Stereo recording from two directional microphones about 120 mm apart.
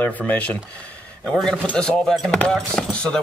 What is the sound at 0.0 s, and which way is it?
Speech, 15° left (ahead or behind).